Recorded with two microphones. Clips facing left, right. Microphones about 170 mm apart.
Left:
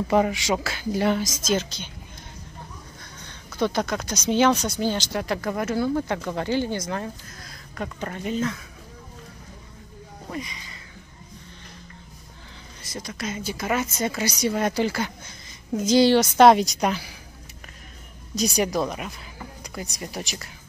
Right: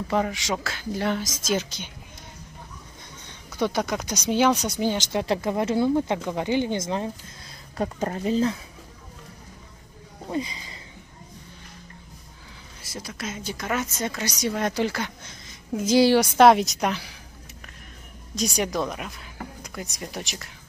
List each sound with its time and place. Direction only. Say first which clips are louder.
0.1 s speech: left 4 dB; 5° left (ahead or behind)
1.2 s speech: left 2 dB; 10° right (ahead or behind)
3.3 s speech: left 1 dB; 10° right (ahead or behind)
7.7 s speech: right 5 dB; 35° right (ahead or behind)
10.3 s a sound: right 5 dB; 30° right (ahead or behind)
12.8 s speech: left 2 dB; 5° right (ahead or behind)
18.3 s speech: left 3 dB; centre (ahead or behind)